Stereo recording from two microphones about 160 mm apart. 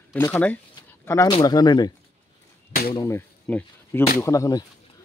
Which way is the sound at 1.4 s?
25° left (ahead or behind).